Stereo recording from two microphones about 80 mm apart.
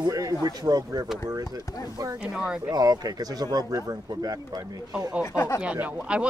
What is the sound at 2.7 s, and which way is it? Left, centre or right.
Speech, right.